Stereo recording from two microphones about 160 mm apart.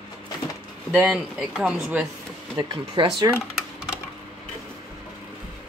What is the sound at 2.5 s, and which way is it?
Speech, 25° right (ahead or behind).